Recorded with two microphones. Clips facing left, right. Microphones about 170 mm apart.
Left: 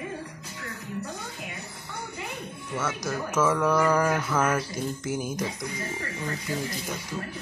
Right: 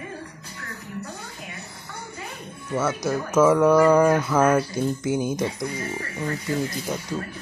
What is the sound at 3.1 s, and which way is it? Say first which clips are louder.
Speech: right 7 dB; 15° right (ahead or behind).